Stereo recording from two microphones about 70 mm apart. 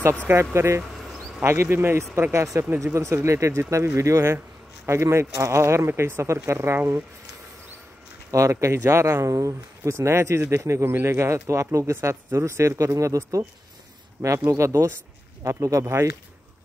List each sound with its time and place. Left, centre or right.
0.3 s speech: right
2.3 s speech: right
8.3 s speech: right
14.5 s speech: right